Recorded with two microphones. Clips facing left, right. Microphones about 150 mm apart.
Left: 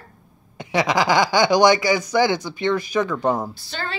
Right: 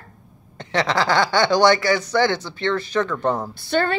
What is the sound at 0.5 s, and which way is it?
Speech, 10° left (ahead or behind).